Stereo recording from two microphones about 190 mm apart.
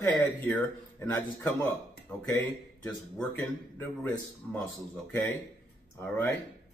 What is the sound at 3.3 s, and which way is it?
A man's voice, 10° left (ahead or behind).